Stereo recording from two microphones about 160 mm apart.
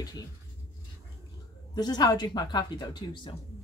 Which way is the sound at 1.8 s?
25° left (ahead or behind).